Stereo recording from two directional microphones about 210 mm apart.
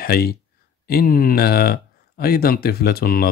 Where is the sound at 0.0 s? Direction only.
45° left (ahead or behind).